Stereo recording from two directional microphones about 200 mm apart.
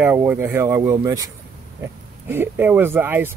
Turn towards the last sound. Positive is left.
turn(degrees=-10)  # may be behind; listen again after turning